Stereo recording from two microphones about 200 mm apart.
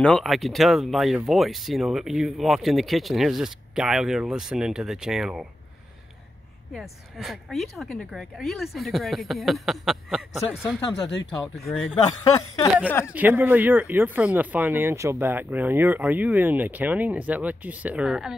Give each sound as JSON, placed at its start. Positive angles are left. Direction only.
{"t": 0.0, "sound": "speech", "side_deg": 0}
{"t": 6.7, "sound": "speech", "side_deg": 0}
{"t": 13.1, "sound": "speech", "side_deg": -10}